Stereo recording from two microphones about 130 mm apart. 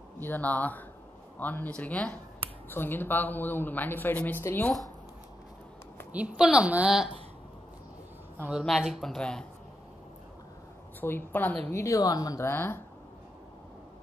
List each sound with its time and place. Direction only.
0.2 s speech: 15° left (ahead or behind)
6.1 s a woman's voice: 10° right (ahead or behind)
8.5 s speech: centre (ahead or behind)
11.0 s a woman's voice: 15° left (ahead or behind)